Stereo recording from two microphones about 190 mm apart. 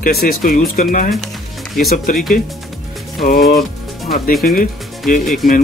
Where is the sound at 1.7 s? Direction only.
Centre (ahead or behind).